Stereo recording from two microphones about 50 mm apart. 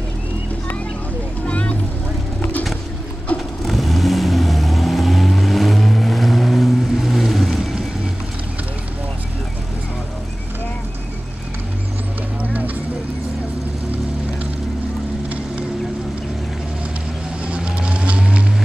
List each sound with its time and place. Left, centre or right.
1.4 s vehicle: left
3.3 s vehicle: left
3.6 s vehicle: centre
12.4 s a sound: right
17.5 s vehicle: right